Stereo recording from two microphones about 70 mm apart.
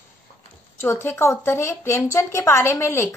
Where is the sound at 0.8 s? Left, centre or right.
Left.